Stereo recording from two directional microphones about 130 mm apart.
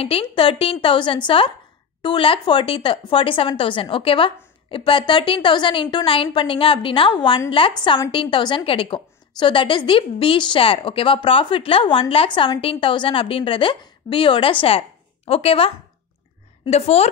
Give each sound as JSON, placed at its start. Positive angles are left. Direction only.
{"t": 0.0, "sound": "a woman's voice", "side_deg": 45}